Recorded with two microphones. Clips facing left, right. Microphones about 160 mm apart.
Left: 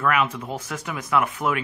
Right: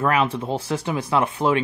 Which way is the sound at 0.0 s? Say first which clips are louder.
Right 2 dB; 30° right (ahead or behind).